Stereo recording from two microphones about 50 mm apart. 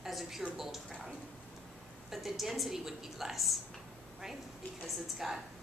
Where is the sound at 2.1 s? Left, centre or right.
Centre.